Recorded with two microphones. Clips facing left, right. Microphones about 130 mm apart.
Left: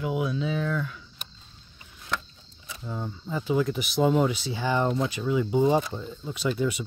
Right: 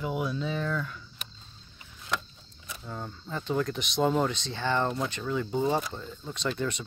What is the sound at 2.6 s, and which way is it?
Speech, centre (ahead or behind).